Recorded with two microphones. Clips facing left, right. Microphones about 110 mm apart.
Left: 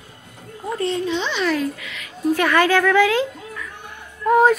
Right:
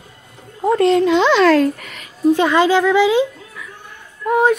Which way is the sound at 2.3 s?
20° right (ahead or behind).